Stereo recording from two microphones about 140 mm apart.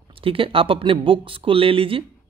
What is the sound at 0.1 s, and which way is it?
Speech, 40° right (ahead or behind).